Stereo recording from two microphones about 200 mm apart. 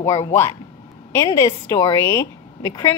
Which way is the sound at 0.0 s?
15° left (ahead or behind).